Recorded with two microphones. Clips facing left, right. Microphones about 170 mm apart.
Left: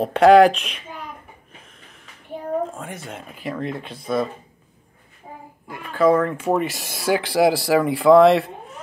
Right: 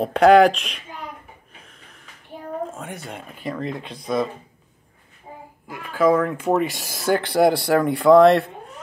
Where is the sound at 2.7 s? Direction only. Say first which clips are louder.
Even; centre (ahead or behind).